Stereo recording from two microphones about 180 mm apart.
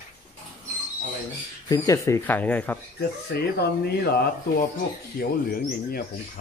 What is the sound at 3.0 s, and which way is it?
Speech, 60° left (ahead or behind).